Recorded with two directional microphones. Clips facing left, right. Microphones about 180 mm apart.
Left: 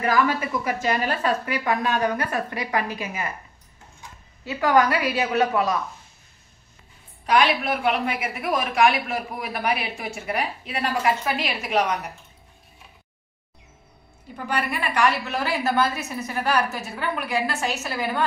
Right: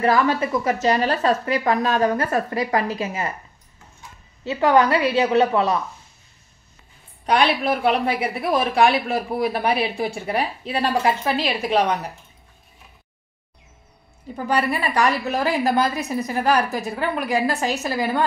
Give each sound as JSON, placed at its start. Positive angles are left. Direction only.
{"t": 0.0, "sound": "a woman's voice", "side_deg": -35}
{"t": 4.5, "sound": "a woman's voice", "side_deg": -20}
{"t": 7.2, "sound": "a woman's voice", "side_deg": -30}
{"t": 14.3, "sound": "a woman's voice", "side_deg": -35}